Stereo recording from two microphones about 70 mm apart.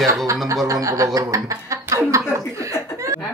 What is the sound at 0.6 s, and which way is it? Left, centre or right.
Speech, right.